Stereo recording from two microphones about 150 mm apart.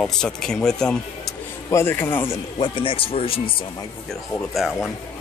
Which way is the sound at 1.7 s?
15° left (ahead or behind).